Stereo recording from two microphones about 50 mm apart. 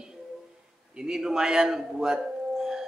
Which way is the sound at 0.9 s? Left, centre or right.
Centre.